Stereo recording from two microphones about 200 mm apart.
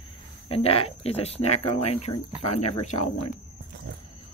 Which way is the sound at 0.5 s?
30° left (ahead or behind).